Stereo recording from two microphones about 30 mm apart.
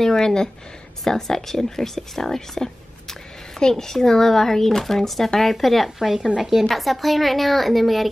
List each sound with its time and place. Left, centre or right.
0.0 s a woman's voice: centre
6.1 s a woman's voice: centre
6.7 s a woman's voice: centre